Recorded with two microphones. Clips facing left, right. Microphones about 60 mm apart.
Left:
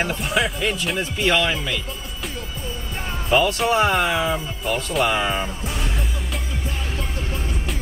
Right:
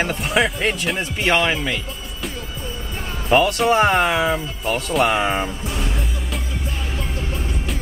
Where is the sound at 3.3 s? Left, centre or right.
Right.